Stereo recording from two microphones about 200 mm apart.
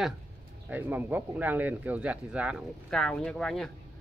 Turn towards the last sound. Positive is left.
turn(degrees=0)  # may be behind; listen again after turning